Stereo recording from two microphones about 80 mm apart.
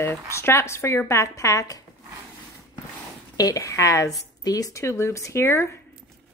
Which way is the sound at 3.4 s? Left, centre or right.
Left.